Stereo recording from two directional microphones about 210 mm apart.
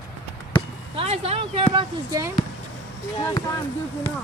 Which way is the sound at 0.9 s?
30° right (ahead or behind).